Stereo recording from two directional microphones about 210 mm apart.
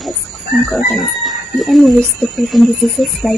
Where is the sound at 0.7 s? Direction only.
Centre (ahead or behind).